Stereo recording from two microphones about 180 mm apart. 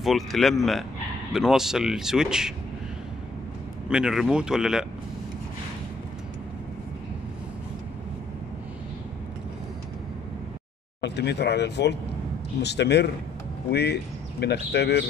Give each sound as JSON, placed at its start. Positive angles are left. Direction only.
{"t": 0.0, "sound": "speech", "side_deg": 0}
{"t": 3.9, "sound": "speech", "side_deg": -5}
{"t": 11.0, "sound": "speech", "side_deg": 70}